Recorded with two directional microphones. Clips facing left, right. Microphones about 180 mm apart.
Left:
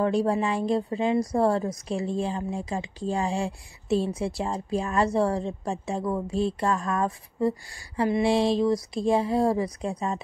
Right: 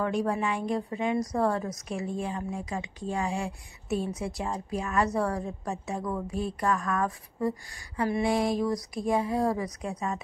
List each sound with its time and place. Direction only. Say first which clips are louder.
0.0 s a woman's voice: left 4 dB; 30° left (ahead or behind)